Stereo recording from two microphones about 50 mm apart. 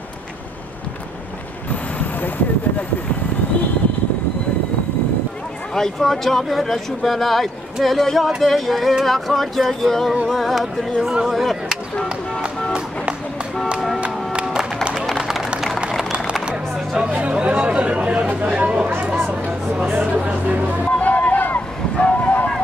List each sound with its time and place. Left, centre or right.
5.8 s speech: centre
11.2 s a sound: centre
13.7 s music: centre
17.1 s speech: right
19.2 s chatter: right
20.0 s speech: right
21.0 s boat: left